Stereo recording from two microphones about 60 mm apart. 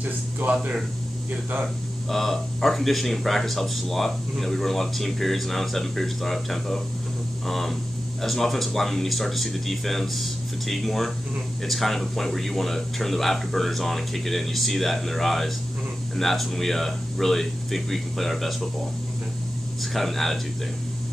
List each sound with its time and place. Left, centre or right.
0.0 s speech: right
2.0 s speech: centre
19.8 s speech: centre